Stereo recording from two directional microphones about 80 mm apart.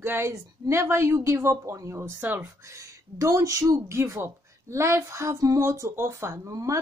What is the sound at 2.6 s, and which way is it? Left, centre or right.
A woman's voice, right.